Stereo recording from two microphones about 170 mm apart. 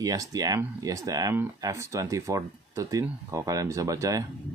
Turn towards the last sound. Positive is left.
turn(degrees=-20)  # may be behind; listen again after turning